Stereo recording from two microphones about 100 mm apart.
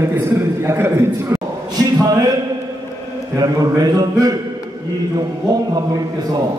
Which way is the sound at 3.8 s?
40° right (ahead or behind).